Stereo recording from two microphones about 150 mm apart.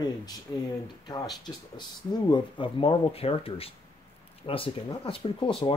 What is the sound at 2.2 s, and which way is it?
Speech, 30° left (ahead or behind).